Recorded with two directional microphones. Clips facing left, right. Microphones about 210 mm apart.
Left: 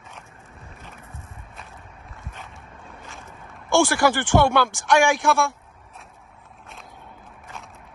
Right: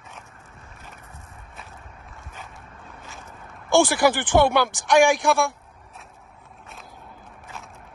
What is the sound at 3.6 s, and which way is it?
Speech, 15° right (ahead or behind).